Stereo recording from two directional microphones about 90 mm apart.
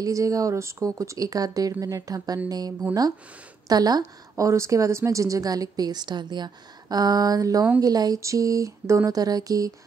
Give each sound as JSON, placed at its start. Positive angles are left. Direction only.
{"t": 0.0, "sound": "a woman's voice", "side_deg": -40}